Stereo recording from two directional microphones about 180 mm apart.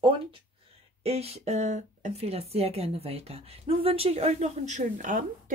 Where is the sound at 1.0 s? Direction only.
35° right (ahead or behind).